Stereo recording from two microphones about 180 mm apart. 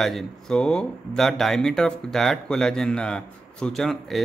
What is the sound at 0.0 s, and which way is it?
A man's voice, centre (ahead or behind).